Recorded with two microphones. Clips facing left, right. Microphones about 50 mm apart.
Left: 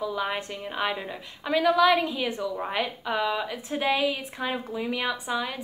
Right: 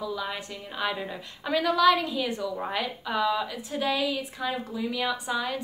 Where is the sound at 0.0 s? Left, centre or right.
Left.